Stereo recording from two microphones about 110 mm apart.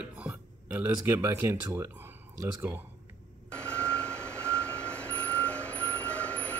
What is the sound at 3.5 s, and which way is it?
Vehicle, 10° left (ahead or behind).